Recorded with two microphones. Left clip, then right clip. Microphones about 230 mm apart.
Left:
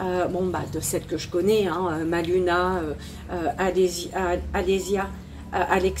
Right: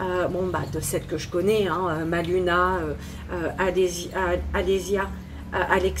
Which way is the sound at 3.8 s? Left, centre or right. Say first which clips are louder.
Left 2 dB; left.